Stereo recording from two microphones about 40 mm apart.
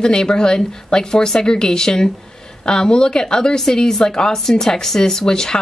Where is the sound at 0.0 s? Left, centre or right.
Centre.